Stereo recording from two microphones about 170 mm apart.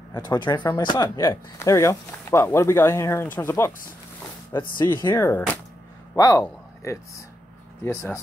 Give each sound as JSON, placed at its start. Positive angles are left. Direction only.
{"t": 0.1, "sound": "speech", "side_deg": 25}
{"t": 5.2, "sound": "speech", "side_deg": 10}